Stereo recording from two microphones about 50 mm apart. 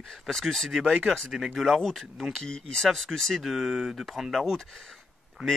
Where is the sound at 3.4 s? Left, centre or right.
Centre.